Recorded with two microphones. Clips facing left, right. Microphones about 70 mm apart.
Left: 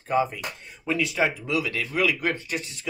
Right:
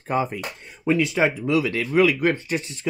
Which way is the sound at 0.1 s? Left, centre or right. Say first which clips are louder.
Even; right.